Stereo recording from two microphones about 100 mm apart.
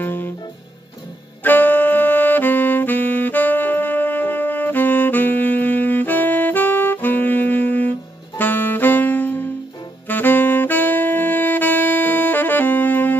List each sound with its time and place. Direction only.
0.0 s music: 20° left (ahead or behind)
1.4 s saxophone: 20° left (ahead or behind)